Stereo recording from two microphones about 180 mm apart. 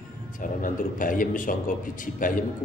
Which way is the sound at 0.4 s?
50° left (ahead or behind).